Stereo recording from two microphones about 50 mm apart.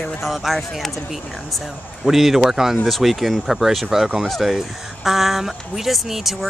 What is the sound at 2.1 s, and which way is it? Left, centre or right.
Speech, centre.